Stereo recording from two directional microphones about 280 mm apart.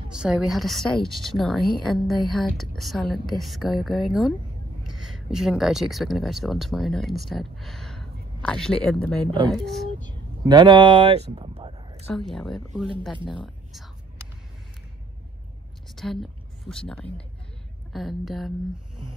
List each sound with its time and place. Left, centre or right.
0.1 s a woman's voice: centre
9.9 s a sound: centre
12.1 s a woman's voice: centre
16.0 s a woman's voice: centre